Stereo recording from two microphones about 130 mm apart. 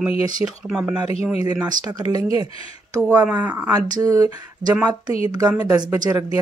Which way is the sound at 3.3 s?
15° right (ahead or behind).